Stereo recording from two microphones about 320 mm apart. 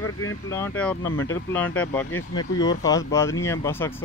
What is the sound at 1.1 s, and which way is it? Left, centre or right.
Speech, left.